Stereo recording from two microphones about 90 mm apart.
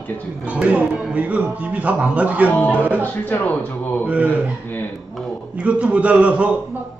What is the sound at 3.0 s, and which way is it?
Speech, 20° left (ahead or behind).